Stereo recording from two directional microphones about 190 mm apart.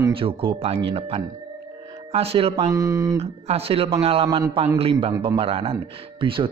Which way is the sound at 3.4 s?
30° right (ahead or behind).